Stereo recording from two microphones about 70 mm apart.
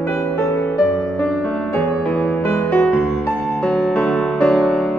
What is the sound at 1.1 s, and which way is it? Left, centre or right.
Music, centre.